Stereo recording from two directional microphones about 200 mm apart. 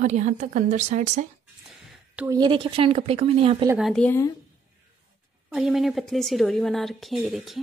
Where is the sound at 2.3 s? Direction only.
25° right (ahead or behind).